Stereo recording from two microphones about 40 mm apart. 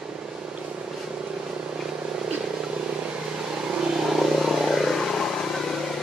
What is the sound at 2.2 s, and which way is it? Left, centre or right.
Vehicle, right.